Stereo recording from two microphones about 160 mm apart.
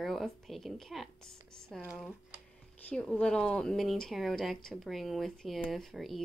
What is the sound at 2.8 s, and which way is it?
A woman's voice, 5° left (ahead or behind).